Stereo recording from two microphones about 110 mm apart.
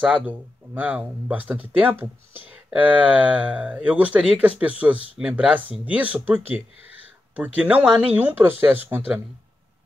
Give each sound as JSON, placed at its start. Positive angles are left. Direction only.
{"t": 0.0, "sound": "speech", "side_deg": -15}